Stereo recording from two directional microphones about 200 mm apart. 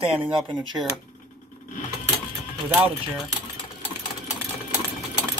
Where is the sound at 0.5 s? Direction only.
20° right (ahead or behind).